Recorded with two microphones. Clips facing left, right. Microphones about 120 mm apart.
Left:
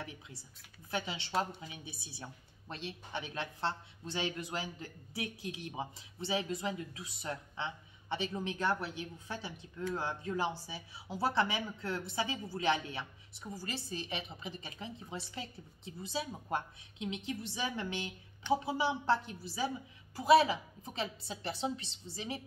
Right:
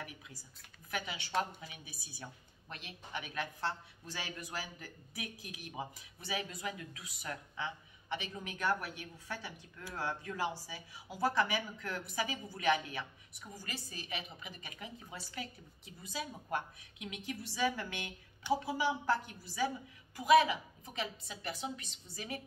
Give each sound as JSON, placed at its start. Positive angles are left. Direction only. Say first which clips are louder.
{"t": 0.0, "sound": "a woman's voice", "louder": "left 2 dB", "side_deg": 25}